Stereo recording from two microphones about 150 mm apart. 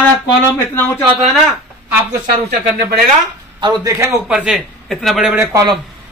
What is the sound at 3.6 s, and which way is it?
Speech, 25° right (ahead or behind).